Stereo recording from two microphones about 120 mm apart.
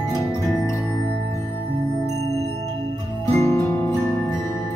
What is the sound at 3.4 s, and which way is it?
Music, 25° left (ahead or behind).